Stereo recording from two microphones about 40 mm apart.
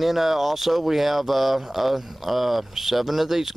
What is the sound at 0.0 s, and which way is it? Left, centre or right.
Speech, centre.